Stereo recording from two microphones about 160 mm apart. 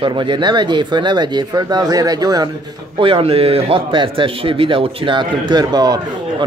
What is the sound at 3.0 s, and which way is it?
Speech, 35° right (ahead or behind).